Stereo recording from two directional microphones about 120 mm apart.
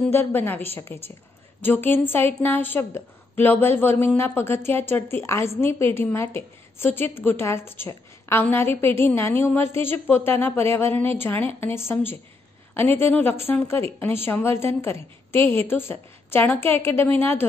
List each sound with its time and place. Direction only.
0.1 s a woman's voice: 15° left (ahead or behind)